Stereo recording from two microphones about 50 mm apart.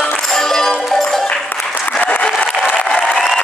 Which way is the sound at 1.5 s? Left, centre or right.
Left.